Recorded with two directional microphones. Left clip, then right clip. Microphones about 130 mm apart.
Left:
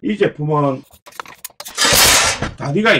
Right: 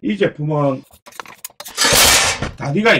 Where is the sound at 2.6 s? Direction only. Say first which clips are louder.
Left 1 dB; 25° right (ahead or behind).